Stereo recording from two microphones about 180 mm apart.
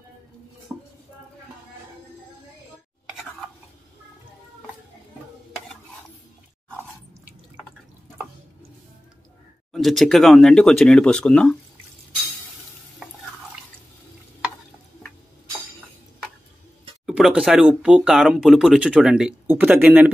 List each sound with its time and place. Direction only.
0.7 s a sound: 15° right (ahead or behind)
9.7 s speech: centre (ahead or behind)
17.0 s speech: 5° right (ahead or behind)